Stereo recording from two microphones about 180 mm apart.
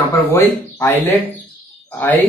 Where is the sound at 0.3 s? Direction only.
15° left (ahead or behind).